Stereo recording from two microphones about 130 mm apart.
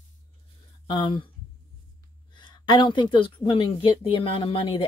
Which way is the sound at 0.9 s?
35° left (ahead or behind).